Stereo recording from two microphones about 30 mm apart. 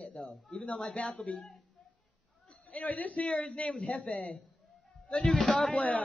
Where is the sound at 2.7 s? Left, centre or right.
Left.